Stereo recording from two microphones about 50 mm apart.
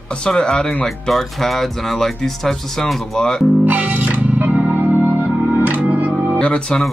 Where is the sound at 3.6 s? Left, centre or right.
Right.